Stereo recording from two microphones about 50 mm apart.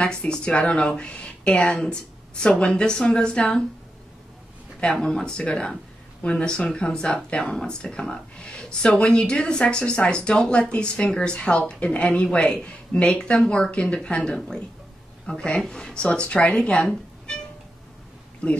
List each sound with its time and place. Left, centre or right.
0.0 s speech: centre
4.9 s speech: centre